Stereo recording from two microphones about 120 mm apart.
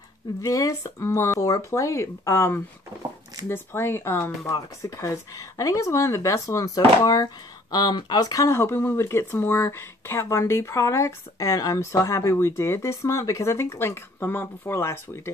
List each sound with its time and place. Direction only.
0.4 s speech: 30° left (ahead or behind)
4.5 s speech: 30° left (ahead or behind)